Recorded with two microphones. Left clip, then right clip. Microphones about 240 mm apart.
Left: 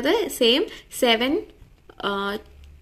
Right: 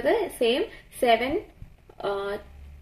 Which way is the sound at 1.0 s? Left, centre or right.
Left.